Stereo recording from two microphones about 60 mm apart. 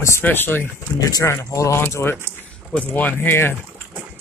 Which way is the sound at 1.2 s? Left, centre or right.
Left.